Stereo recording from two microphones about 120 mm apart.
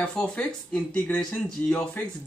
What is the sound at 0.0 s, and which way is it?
Speech, 10° left (ahead or behind).